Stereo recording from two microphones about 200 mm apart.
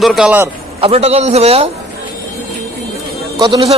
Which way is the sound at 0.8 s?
30° right (ahead or behind).